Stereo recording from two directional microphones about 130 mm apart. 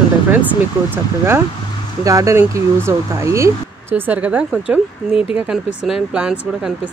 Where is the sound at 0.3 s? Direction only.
15° right (ahead or behind).